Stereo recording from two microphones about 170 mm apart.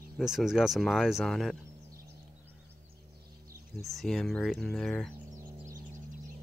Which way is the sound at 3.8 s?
Centre (ahead or behind).